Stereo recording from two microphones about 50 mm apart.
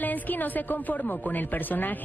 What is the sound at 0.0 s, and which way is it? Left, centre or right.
Speech, left.